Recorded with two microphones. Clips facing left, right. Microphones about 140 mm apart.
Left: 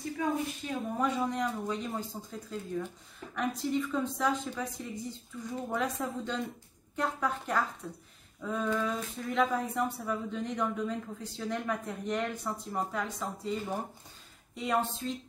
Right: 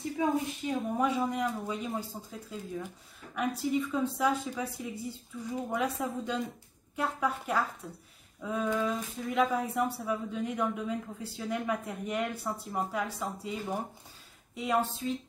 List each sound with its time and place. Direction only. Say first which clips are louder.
0.2 s a woman's voice: right 3 dB; 20° right (ahead or behind)
0.7 s speech: right 1 dB; 5° right (ahead or behind)